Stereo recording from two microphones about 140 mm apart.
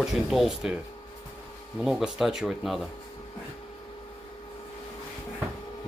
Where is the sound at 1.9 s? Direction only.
Centre (ahead or behind).